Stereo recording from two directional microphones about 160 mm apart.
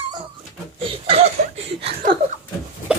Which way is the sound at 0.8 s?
40° right (ahead or behind).